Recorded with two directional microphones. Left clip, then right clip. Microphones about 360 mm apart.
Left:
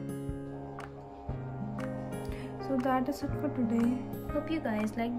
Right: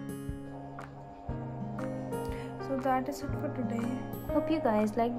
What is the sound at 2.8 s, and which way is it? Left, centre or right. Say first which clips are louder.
Speech: even; centre.